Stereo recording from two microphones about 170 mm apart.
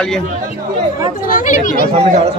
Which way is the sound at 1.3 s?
50° left (ahead or behind).